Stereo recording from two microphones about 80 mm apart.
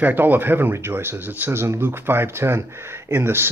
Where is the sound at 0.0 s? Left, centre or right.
Right.